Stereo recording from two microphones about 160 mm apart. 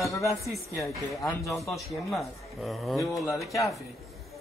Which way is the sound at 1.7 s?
Centre (ahead or behind).